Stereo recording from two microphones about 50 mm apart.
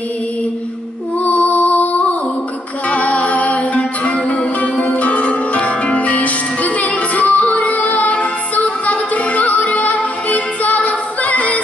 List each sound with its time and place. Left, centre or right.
1.2 s music: left